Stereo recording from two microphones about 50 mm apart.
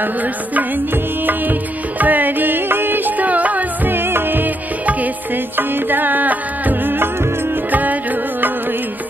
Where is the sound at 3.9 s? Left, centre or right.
Right.